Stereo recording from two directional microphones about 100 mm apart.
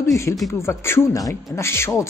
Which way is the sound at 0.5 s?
25° left (ahead or behind).